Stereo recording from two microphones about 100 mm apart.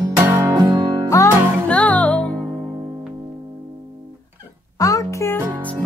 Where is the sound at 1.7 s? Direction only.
15° left (ahead or behind).